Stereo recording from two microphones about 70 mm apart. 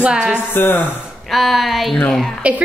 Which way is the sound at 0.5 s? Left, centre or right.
Left.